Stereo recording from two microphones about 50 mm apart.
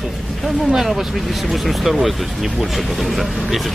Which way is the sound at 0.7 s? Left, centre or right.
Centre.